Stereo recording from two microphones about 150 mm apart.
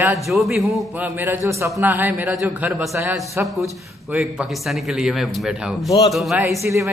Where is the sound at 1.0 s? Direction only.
10° right (ahead or behind).